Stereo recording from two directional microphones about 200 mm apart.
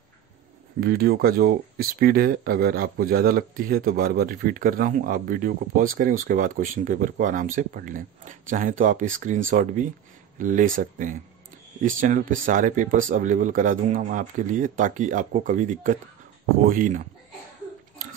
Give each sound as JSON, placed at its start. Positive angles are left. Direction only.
{"t": 0.7, "sound": "speech", "side_deg": -50}